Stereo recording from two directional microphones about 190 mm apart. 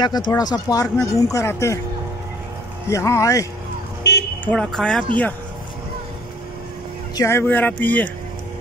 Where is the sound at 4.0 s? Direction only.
65° left (ahead or behind).